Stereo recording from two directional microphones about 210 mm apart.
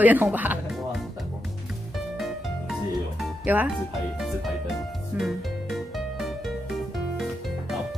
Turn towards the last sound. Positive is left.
turn(degrees=0)  # may be behind; listen again after turning